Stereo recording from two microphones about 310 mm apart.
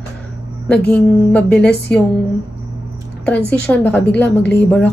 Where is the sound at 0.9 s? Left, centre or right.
Centre.